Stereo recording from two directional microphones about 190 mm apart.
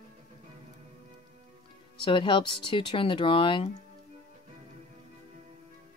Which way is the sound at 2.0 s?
25° left (ahead or behind).